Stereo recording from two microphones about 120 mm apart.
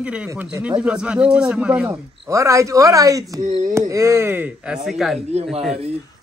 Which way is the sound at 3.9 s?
25° right (ahead or behind).